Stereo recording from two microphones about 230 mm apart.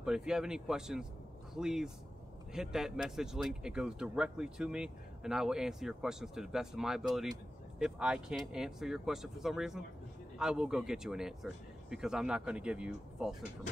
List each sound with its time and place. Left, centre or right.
0.0 s speech: centre